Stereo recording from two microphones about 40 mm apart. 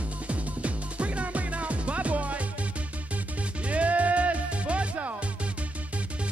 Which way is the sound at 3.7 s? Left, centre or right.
Right.